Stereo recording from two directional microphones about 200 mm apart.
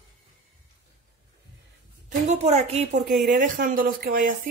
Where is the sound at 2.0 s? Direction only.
35° right (ahead or behind).